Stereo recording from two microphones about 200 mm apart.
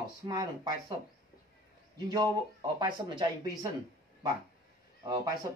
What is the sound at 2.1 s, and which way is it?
Speech, 20° right (ahead or behind).